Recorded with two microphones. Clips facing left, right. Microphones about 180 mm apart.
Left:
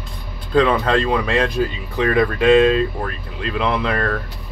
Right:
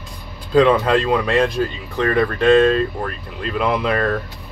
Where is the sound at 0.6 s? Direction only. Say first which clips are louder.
Right 2 dB; 5° right (ahead or behind).